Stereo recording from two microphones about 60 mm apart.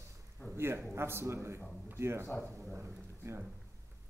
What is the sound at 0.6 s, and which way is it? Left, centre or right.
A man's voice, right.